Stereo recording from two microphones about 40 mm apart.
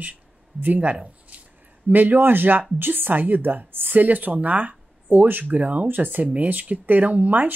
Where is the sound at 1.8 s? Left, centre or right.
Right.